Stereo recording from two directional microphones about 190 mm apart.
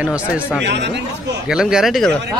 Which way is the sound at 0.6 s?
65° right (ahead or behind).